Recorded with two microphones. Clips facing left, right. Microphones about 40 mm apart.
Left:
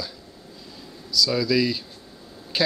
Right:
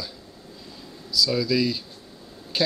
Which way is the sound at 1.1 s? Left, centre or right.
Centre.